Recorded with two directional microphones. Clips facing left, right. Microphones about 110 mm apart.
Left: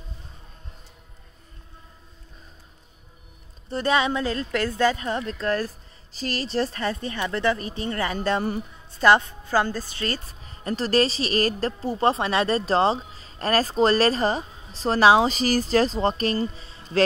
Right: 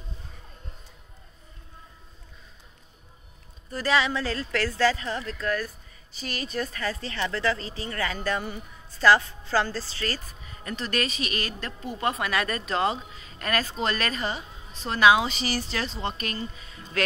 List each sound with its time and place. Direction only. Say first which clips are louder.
3.6 s a woman's voice: left 3 dB; 25° left (ahead or behind)
8.4 s speech: left 7 dB; 40° left (ahead or behind)
9.0 s a woman's voice: left 2 dB; 20° left (ahead or behind)
10.4 s speech: left 10 dB; 35° left (ahead or behind)